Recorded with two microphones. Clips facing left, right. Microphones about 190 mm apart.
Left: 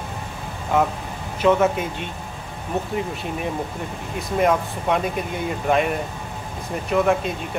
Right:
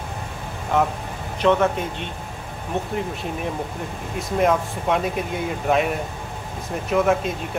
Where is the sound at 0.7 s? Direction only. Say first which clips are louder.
Left 1 dB; centre (ahead or behind).